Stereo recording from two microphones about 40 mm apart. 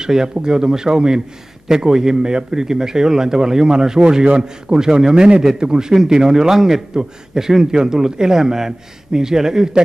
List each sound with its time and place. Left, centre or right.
0.0 s a man's voice: centre